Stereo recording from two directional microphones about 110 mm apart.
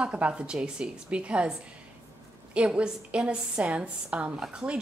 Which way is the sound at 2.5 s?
10° right (ahead or behind).